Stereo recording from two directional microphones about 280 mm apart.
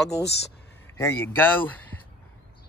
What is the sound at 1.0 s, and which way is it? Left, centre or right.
Speech, centre.